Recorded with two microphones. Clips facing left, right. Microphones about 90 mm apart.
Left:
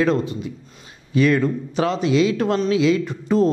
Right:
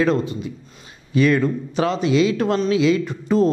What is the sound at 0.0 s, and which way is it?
A man's voice, 15° right (ahead or behind).